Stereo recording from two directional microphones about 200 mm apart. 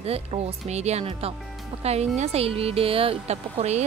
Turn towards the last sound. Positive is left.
turn(degrees=-35)  # may be behind; listen again after turning